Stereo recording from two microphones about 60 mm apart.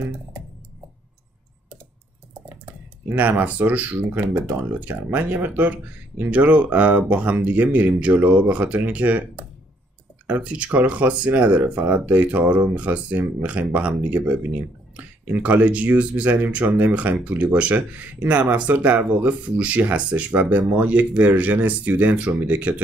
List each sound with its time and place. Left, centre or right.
3.2 s speech: right